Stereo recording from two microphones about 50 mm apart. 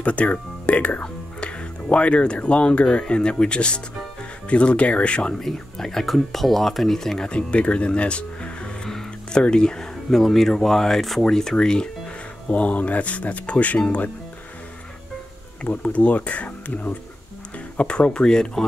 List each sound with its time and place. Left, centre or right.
0.0 s speech: left
5.4 s speech: centre; by 8.5 s left
8.8 s music: centre
9.4 s speech: centre
12.4 s speech: left
15.6 s speech: left
17.7 s speech: centre